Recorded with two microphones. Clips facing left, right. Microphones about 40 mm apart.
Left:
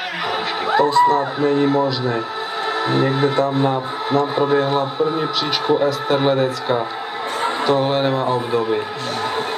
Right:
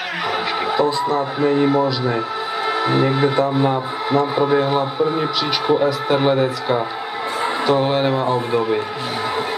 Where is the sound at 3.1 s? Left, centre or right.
Centre.